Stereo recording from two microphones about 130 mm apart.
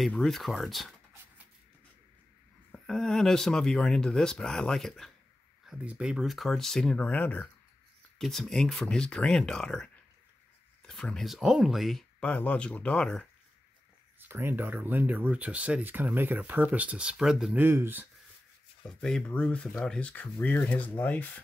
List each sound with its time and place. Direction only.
0.0 s speech: 5° left (ahead or behind)
2.7 s speech: 5° left (ahead or behind)
10.9 s speech: 5° left (ahead or behind)
14.2 s speech: 15° right (ahead or behind)
17.6 s speech: 15° right (ahead or behind)
18.9 s speech: 5° left (ahead or behind)